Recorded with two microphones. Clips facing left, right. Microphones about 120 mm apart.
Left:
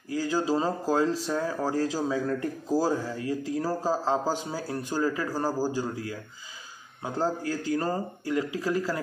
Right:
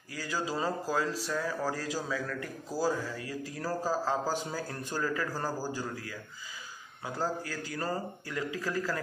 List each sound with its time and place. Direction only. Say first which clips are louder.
0.1 s speech: left 8 dB; 25° left (ahead or behind)